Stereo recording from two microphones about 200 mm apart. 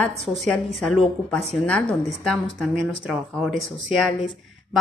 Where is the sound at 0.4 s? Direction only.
Centre (ahead or behind).